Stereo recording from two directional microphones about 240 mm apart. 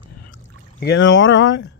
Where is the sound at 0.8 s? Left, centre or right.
Left.